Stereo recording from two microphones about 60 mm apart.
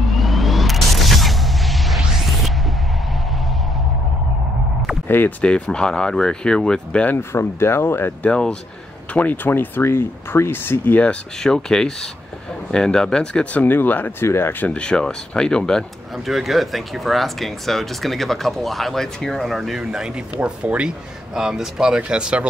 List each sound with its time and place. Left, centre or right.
0.1 s music: centre
5.0 s a sound: left
5.4 s speech: centre
7.1 s speech: left
8.2 s speech: centre
9.1 s speech: left
11.4 s speech: centre
13.7 s speech: left
14.2 s speech: left
14.7 s speech: centre
16.3 s speech: centre
19.8 s speech: centre
21.4 s speech: centre